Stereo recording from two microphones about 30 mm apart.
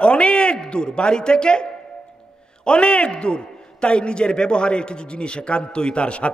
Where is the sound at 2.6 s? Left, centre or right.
Left.